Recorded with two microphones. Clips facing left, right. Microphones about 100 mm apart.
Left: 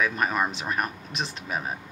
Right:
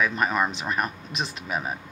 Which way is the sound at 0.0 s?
5° left (ahead or behind).